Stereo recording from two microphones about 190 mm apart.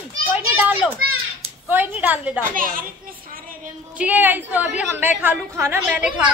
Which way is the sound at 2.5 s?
45° right (ahead or behind).